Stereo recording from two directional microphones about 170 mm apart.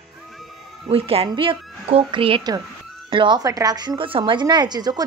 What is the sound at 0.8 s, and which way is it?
A woman's voice, 35° right (ahead or behind).